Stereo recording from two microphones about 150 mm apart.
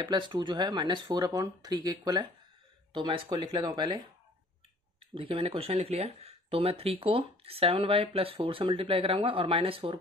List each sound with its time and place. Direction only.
0.0 s speech: 30° right (ahead or behind)
5.1 s speech: 40° right (ahead or behind)